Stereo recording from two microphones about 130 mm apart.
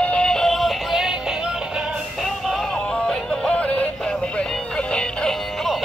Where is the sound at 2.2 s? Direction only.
Centre (ahead or behind).